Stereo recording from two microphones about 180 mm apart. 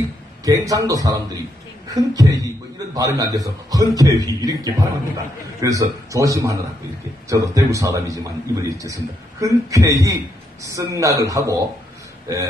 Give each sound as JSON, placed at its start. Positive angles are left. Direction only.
{"t": 0.5, "sound": "a man's voice", "side_deg": -20}